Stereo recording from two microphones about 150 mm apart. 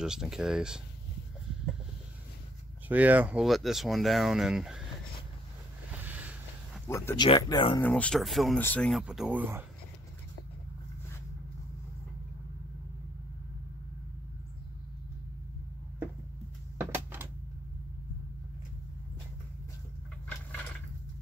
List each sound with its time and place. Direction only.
0.0 s speech: 5° right (ahead or behind)
2.9 s speech: 10° right (ahead or behind)
6.0 s a sound: 10° right (ahead or behind)
6.9 s speech: 15° left (ahead or behind)
7.2 s speech: 30° left (ahead or behind)
7.8 s speech: 5° left (ahead or behind)
8.5 s speech: 10° left (ahead or behind)
9.0 s speech: 5° right (ahead or behind)
16.7 s a sound: 15° right (ahead or behind)